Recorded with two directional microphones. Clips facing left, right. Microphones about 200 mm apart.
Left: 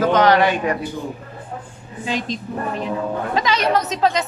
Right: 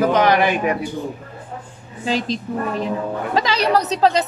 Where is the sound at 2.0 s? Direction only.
35° right (ahead or behind).